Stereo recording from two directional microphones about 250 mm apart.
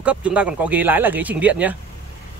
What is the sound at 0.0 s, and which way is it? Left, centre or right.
Speech, centre.